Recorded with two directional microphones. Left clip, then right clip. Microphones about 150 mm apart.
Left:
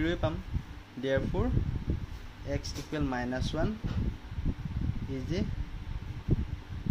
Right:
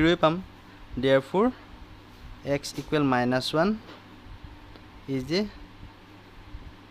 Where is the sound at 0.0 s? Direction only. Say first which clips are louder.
Right 10 dB; 75° right (ahead or behind).